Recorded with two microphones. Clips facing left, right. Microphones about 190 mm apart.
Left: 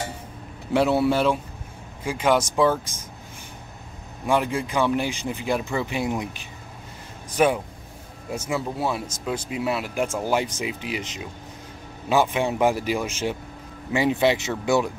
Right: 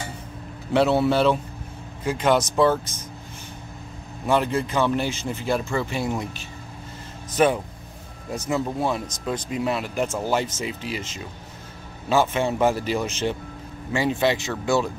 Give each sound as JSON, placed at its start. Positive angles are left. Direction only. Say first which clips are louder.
{"t": 0.7, "sound": "speech", "louder": "right 1 dB", "side_deg": 10}
{"t": 4.3, "sound": "speech", "louder": "right 1 dB", "side_deg": 10}